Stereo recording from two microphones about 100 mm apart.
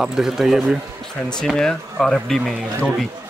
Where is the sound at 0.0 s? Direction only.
5° right (ahead or behind).